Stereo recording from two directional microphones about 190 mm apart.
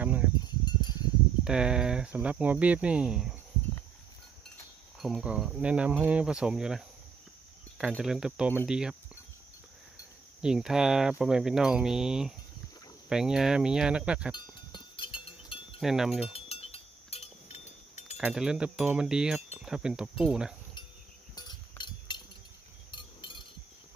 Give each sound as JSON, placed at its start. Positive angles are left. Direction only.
{"t": 0.0, "sound": "wind chime", "side_deg": -10}
{"t": 1.4, "sound": "speech", "side_deg": -5}
{"t": 5.0, "sound": "speech", "side_deg": -5}
{"t": 10.4, "sound": "speech", "side_deg": -5}
{"t": 14.3, "sound": "cowbell", "side_deg": 25}
{"t": 15.8, "sound": "speech", "side_deg": 0}
{"t": 16.3, "sound": "a sound", "side_deg": 30}
{"t": 18.1, "sound": "speech", "side_deg": -5}
{"t": 21.4, "sound": "a sound", "side_deg": 25}